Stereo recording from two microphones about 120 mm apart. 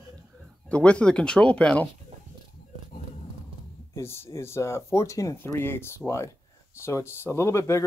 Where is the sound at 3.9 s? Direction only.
20° left (ahead or behind).